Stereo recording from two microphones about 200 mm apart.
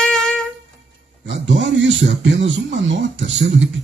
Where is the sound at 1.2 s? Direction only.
65° right (ahead or behind).